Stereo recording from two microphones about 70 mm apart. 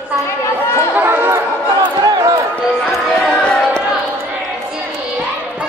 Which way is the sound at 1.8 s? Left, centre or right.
Right.